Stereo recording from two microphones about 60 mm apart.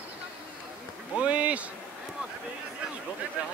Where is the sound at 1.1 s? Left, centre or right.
Right.